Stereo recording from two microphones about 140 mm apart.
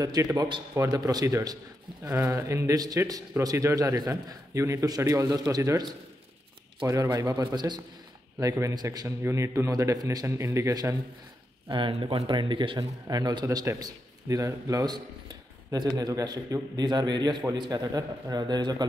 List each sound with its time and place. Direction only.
0.0 s a man's voice: 25° right (ahead or behind)
11.7 s a man's voice: 40° right (ahead or behind)